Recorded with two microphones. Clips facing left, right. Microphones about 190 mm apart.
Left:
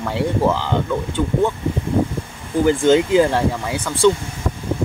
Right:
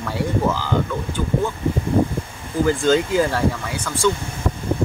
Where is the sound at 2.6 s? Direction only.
20° left (ahead or behind).